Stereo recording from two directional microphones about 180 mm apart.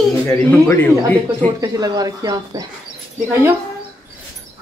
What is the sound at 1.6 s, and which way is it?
Speech, 20° right (ahead or behind).